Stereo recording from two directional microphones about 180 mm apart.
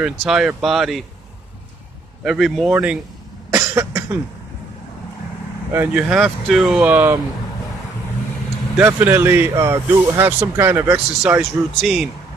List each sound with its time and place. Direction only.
0.0 s speech: 5° right (ahead or behind)
2.2 s speech: centre (ahead or behind)
3.4 s cough: 15° right (ahead or behind)
5.7 s speech: 10° right (ahead or behind)
8.7 s speech: 10° right (ahead or behind)